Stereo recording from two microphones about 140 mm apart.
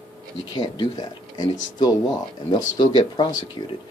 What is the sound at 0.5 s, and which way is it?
Speech, 30° left (ahead or behind).